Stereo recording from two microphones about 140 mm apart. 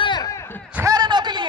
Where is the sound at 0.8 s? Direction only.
30° right (ahead or behind).